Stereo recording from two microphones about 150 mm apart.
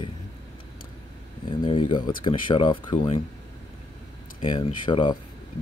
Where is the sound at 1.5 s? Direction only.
35° left (ahead or behind).